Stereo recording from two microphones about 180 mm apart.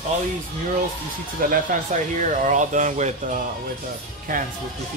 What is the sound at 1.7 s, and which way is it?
Speech, 45° right (ahead or behind).